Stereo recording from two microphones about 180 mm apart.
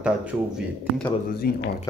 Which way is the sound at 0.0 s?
5° right (ahead or behind).